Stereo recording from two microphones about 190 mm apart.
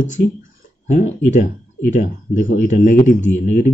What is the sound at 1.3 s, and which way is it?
Speech, 45° left (ahead or behind).